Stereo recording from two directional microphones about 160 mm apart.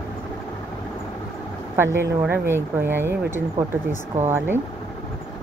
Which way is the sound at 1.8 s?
15° right (ahead or behind).